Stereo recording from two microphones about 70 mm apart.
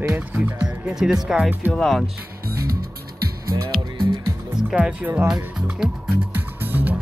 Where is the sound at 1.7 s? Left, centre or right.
Centre.